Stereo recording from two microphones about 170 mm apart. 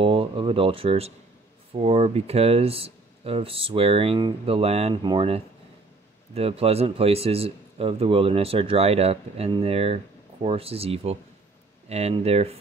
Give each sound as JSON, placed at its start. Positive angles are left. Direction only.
{"t": 0.0, "sound": "a man's voice", "side_deg": -30}